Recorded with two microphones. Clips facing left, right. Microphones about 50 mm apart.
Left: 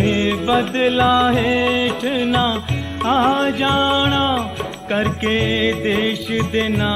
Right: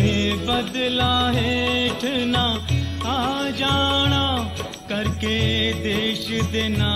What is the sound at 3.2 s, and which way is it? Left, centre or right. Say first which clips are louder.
Music: left 7 dB; left.